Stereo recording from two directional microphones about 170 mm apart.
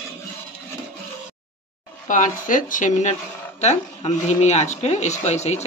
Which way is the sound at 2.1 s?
50° left (ahead or behind).